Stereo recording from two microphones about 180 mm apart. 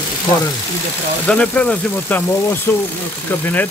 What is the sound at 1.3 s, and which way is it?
Speech, 5° left (ahead or behind).